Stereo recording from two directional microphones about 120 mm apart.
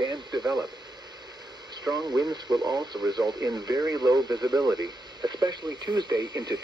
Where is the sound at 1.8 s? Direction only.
35° right (ahead or behind).